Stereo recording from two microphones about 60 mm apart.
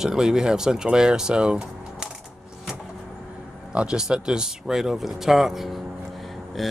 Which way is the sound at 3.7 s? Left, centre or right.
Centre.